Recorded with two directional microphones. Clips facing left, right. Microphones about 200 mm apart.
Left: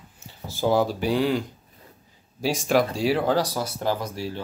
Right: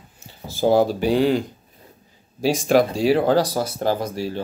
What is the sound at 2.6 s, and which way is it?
Speech, 25° right (ahead or behind).